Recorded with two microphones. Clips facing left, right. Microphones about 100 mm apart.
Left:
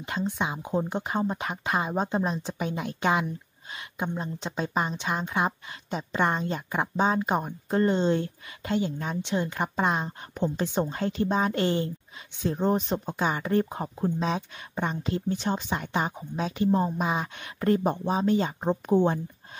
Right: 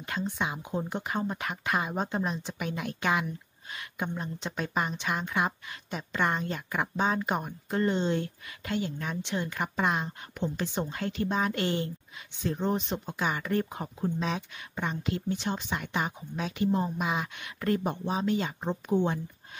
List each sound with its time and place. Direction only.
0.0 s a woman's voice: 25° left (ahead or behind)